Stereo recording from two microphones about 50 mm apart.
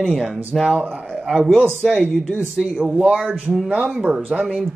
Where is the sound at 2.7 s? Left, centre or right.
Right.